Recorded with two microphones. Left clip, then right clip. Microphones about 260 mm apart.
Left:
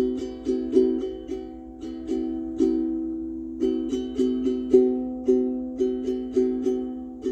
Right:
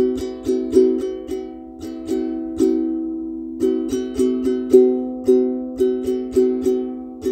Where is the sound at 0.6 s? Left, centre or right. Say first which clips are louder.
Right 6 dB; right.